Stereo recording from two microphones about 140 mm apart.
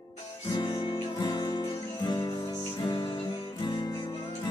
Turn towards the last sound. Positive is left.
turn(degrees=30)  # may be behind; listen again after turning